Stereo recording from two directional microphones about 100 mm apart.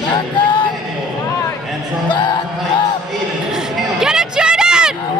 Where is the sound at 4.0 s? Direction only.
5° right (ahead or behind).